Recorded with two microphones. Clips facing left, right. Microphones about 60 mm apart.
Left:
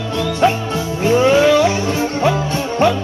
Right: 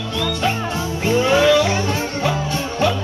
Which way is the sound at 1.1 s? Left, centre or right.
Left.